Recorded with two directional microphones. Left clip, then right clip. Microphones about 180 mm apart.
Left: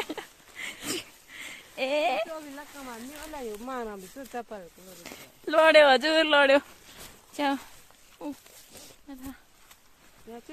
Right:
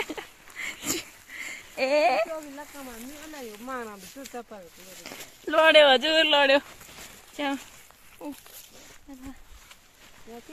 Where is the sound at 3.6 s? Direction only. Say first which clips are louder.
Even; 55° left (ahead or behind).